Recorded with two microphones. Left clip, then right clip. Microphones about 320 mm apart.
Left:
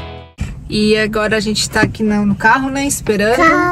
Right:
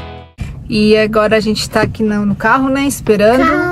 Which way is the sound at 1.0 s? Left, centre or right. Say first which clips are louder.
Right 4 dB; centre.